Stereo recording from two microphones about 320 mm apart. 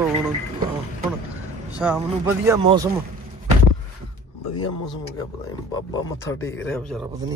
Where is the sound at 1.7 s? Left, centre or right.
Centre.